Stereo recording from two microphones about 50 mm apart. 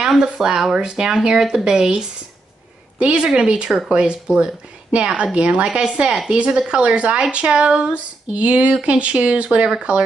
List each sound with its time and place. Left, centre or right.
0.0 s speech: centre